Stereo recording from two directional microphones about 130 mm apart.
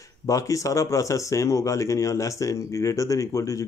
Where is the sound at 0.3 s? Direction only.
25° left (ahead or behind).